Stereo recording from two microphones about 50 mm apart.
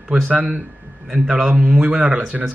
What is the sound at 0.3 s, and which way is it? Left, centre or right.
Speech, right.